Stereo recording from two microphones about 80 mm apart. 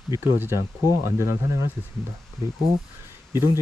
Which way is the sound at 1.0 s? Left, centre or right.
Right.